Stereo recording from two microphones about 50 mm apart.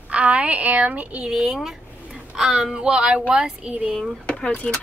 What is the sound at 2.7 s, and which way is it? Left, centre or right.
Speech, centre.